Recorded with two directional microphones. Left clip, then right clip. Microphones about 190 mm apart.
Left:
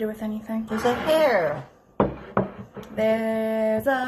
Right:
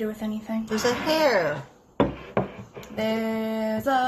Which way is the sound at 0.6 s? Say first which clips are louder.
Left 2 dB; 25° right (ahead or behind).